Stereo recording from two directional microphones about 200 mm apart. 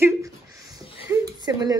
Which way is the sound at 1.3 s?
20° right (ahead or behind).